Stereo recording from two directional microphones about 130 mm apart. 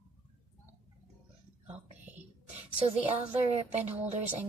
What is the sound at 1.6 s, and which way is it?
Whispering, 15° right (ahead or behind).